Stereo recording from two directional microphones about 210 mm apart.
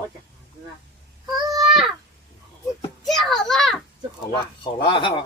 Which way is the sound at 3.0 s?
Centre (ahead or behind).